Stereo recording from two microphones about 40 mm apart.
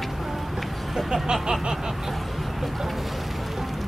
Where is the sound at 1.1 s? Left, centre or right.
Centre.